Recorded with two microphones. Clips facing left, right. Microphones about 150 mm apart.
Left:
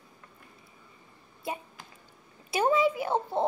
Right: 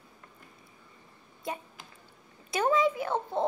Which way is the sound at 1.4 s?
15° left (ahead or behind).